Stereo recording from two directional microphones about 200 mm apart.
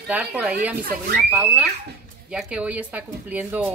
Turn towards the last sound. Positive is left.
turn(degrees=-10)  # may be behind; listen again after turning